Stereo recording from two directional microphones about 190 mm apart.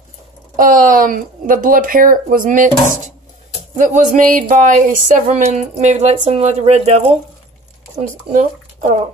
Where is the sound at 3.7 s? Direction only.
40° right (ahead or behind).